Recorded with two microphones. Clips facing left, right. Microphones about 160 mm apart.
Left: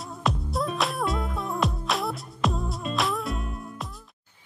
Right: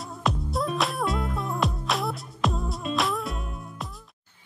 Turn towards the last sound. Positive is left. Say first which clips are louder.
# left 1 dB
turn(degrees=0)  # may be behind; listen again after turning